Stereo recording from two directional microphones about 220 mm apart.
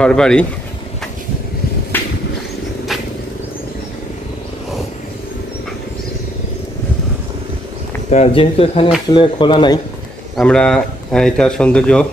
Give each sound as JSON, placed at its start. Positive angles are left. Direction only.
{"t": 0.0, "sound": "speech", "side_deg": 5}
{"t": 1.9, "sound": "a sound", "side_deg": 10}
{"t": 8.1, "sound": "speech", "side_deg": 30}
{"t": 10.3, "sound": "speech", "side_deg": 5}